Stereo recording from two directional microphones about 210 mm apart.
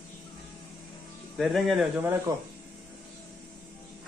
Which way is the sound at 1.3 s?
Centre (ahead or behind).